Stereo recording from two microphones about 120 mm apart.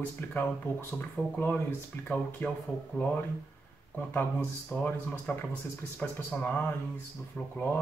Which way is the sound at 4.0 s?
15° left (ahead or behind).